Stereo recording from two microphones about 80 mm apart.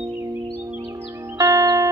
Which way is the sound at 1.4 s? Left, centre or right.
Right.